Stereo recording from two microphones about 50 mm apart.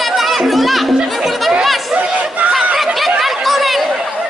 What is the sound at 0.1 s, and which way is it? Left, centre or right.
Music, centre.